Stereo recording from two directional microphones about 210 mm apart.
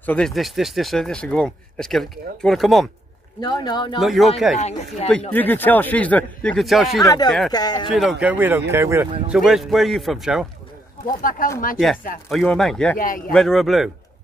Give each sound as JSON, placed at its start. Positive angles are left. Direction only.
{"t": 0.0, "sound": "speech", "side_deg": 5}
{"t": 3.3, "sound": "a man's voice", "side_deg": 20}
{"t": 4.0, "sound": "speech", "side_deg": 0}
{"t": 4.6, "sound": "speech", "side_deg": 35}
{"t": 5.3, "sound": "speech", "side_deg": 10}
{"t": 7.5, "sound": "a man's voice", "side_deg": 20}
{"t": 7.9, "sound": "speech", "side_deg": 0}
{"t": 9.3, "sound": "speech", "side_deg": 0}
{"t": 11.2, "sound": "speech", "side_deg": 40}
{"t": 12.3, "sound": "speech", "side_deg": 0}